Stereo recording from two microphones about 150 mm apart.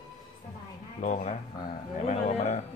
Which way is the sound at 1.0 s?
55° left (ahead or behind).